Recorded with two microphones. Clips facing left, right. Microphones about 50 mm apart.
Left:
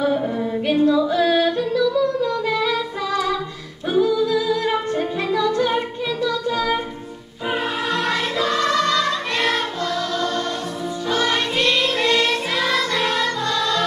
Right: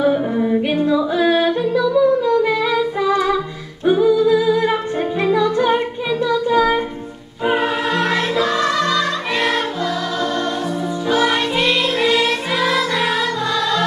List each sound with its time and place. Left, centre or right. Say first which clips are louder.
0.0 s yodeling: right 4 dB; centre
3.8 s music: right 5 dB; centre